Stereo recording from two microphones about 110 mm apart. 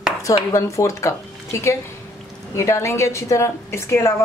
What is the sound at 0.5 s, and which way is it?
Speech, 30° left (ahead or behind).